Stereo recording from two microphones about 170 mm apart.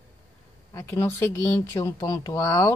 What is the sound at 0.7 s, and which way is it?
A woman's voice, 15° left (ahead or behind).